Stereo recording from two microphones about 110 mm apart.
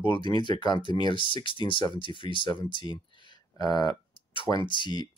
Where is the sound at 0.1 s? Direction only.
45° left (ahead or behind).